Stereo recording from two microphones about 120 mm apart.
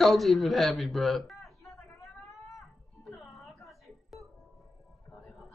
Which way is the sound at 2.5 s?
Centre (ahead or behind).